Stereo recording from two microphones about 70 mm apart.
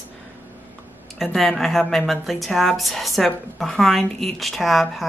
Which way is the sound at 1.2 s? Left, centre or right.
Centre.